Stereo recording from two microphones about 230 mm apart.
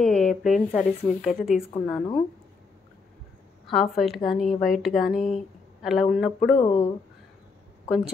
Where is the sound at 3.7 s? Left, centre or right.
Centre.